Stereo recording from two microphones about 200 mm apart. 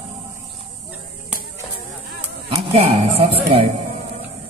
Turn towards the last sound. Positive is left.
turn(degrees=-30)  # may be behind; listen again after turning